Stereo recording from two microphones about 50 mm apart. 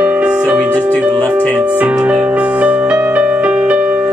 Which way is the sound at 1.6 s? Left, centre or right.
Right.